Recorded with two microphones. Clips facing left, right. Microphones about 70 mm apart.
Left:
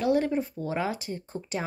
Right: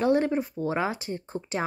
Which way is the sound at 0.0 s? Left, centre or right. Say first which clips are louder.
Right 2 dB; right.